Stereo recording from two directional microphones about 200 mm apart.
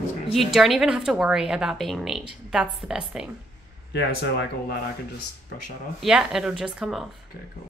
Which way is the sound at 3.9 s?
55° left (ahead or behind).